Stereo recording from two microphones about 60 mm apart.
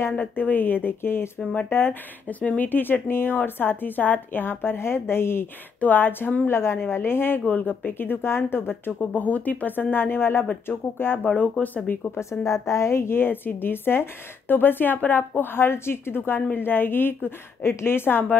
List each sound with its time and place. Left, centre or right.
0.1 s a woman's voice: left
2.2 s a woman's voice: left
5.8 s a woman's voice: left
10.4 s speech: centre
12.2 s a woman's voice: left